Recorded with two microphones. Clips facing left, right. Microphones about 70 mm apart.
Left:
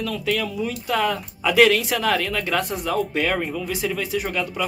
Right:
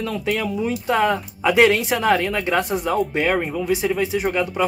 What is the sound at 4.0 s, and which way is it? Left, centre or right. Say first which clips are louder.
Speech: right 4 dB; right.